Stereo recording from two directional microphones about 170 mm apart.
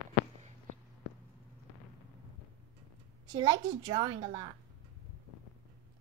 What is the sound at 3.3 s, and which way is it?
A woman's voice, 25° right (ahead or behind).